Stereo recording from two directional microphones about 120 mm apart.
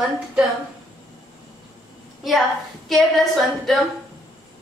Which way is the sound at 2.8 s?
Centre (ahead or behind).